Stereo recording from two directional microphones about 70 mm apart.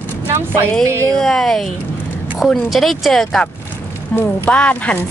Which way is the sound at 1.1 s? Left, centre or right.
Centre.